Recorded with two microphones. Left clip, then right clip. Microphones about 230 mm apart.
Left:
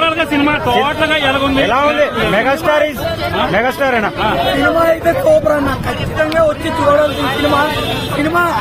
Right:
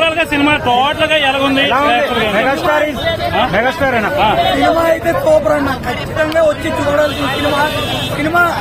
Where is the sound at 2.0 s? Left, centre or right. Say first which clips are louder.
Even; left.